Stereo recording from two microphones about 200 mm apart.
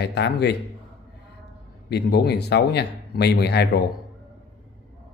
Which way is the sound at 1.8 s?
55° left (ahead or behind).